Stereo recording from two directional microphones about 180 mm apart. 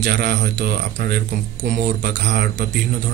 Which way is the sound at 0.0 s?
50° right (ahead or behind).